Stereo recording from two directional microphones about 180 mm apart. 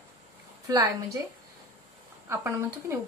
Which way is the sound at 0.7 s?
20° right (ahead or behind).